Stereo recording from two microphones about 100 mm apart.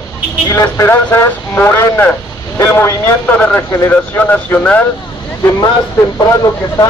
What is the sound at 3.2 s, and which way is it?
Speech, 15° left (ahead or behind).